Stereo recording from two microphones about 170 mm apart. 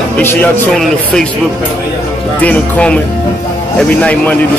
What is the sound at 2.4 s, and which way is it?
Speech, 10° left (ahead or behind).